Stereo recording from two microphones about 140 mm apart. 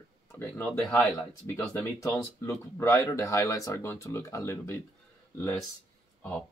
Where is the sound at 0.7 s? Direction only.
Centre (ahead or behind).